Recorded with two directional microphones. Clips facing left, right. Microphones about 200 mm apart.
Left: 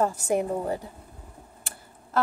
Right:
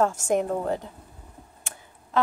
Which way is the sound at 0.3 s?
10° left (ahead or behind).